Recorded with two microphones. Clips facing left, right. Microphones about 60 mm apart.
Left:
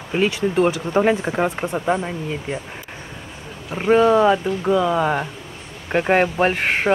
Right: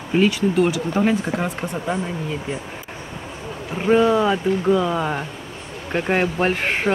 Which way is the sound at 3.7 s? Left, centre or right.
Centre.